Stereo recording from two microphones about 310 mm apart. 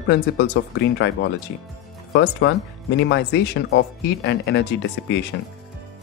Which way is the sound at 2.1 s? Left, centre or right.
Left.